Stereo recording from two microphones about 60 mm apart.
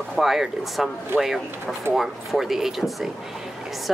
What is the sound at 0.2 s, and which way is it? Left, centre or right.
Speech, centre.